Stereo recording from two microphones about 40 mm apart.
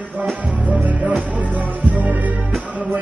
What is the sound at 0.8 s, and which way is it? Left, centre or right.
Music, right.